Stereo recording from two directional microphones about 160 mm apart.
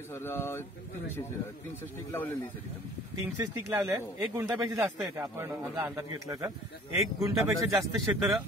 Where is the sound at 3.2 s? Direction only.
20° right (ahead or behind).